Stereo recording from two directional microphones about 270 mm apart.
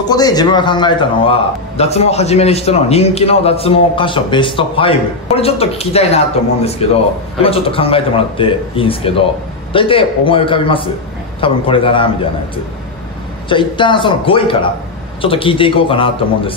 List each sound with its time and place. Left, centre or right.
0.0 s a man's voice: centre
13.5 s a man's voice: centre